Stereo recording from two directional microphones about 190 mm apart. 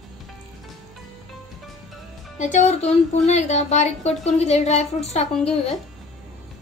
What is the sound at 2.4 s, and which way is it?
Speech, 40° left (ahead or behind).